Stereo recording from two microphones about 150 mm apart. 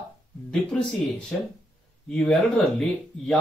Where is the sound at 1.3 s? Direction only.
5° left (ahead or behind).